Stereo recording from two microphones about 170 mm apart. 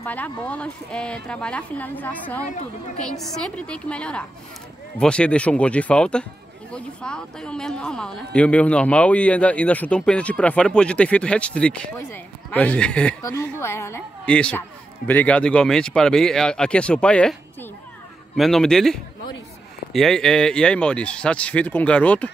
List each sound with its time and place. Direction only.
0.0 s speech: 10° left (ahead or behind)